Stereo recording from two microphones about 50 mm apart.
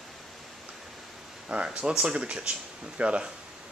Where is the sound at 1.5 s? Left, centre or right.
Right.